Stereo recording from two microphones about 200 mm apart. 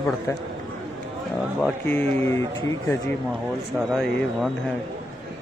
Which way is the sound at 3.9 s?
Centre (ahead or behind).